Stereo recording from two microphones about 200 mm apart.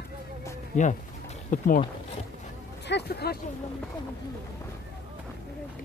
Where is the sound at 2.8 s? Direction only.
55° left (ahead or behind).